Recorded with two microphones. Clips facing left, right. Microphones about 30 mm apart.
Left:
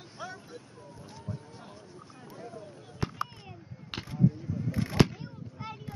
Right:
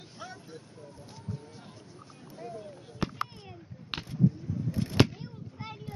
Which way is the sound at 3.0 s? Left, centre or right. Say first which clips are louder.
Right 1 dB; centre.